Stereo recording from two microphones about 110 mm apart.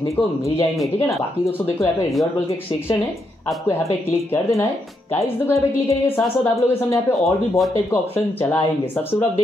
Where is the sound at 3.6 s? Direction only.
25° left (ahead or behind).